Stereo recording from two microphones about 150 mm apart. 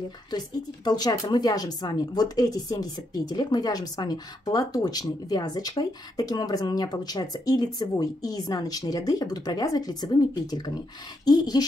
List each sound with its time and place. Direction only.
0.8 s speech: 25° left (ahead or behind)